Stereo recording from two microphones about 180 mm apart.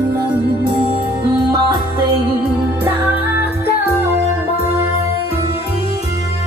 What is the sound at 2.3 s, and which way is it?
Music, 10° right (ahead or behind).